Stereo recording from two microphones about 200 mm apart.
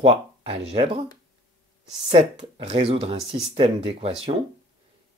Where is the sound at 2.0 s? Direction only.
30° right (ahead or behind).